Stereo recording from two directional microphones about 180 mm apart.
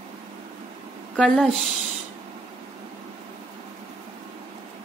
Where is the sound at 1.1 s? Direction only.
5° left (ahead or behind).